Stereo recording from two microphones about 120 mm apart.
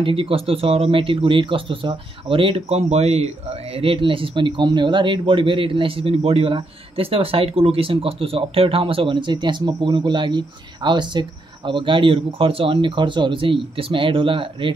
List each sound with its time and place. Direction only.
0.0 s speech: 50° right (ahead or behind)